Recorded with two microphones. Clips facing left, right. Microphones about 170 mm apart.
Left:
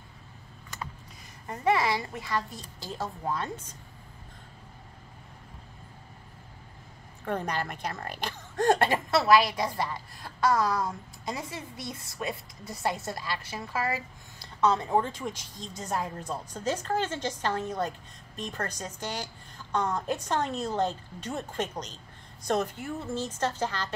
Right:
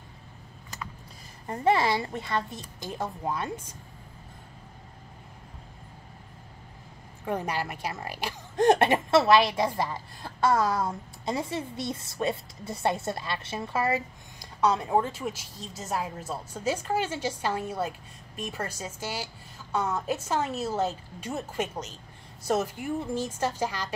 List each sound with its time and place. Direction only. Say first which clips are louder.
1.5 s a woman's voice: right 2 dB; 30° right (ahead or behind); by 3.7 s 10° right (ahead or behind)
7.2 s speech: right 1 dB; 10° right (ahead or behind)
8.5 s a woman's voice: right 3 dB; 20° right (ahead or behind)
14.6 s speech: right 1 dB; 10° right (ahead or behind)